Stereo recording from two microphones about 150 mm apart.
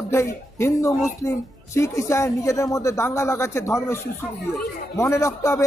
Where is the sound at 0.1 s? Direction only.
20° left (ahead or behind).